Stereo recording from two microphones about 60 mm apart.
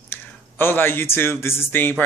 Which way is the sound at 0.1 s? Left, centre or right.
Left.